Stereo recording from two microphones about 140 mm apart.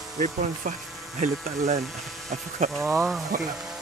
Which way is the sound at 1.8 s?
Centre (ahead or behind).